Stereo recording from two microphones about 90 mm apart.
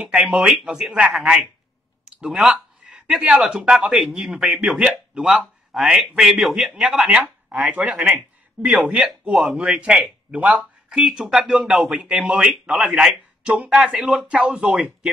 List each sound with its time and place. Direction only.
0.0 s speech: 10° right (ahead or behind)